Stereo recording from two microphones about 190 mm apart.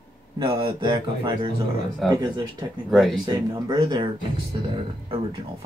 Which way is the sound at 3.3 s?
20° right (ahead or behind).